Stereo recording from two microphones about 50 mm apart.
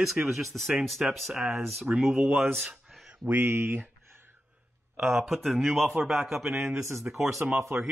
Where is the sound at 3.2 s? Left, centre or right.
Right.